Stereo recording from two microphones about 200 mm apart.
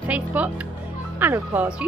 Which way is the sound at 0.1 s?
5° right (ahead or behind).